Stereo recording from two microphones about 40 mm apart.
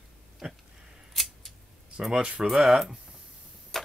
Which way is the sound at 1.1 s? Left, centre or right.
Centre.